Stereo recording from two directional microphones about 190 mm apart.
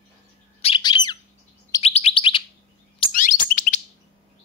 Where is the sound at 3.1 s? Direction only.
45° left (ahead or behind).